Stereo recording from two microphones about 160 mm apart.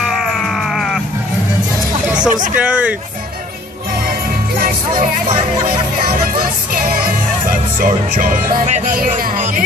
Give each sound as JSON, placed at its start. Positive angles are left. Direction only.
{"t": 0.0, "sound": "sheep", "side_deg": 0}
{"t": 2.2, "sound": "speech", "side_deg": -55}
{"t": 2.5, "sound": "speech", "side_deg": -5}
{"t": 4.6, "sound": "music", "side_deg": -55}
{"t": 7.4, "sound": "music", "side_deg": -60}